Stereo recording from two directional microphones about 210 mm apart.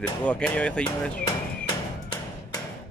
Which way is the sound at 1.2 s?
20° left (ahead or behind).